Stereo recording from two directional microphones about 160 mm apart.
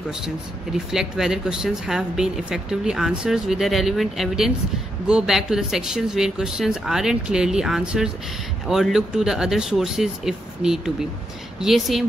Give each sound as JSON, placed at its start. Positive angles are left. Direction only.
{"t": 0.9, "sound": "speech", "side_deg": -5}